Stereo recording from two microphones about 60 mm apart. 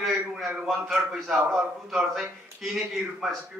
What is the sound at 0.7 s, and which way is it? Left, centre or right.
A man's voice, centre.